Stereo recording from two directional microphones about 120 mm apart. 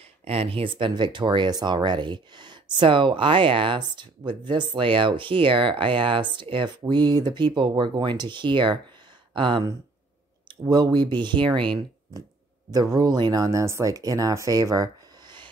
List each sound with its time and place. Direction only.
0.2 s speech: 55° right (ahead or behind)
10.7 s speech: 35° right (ahead or behind)
12.7 s speech: 30° right (ahead or behind)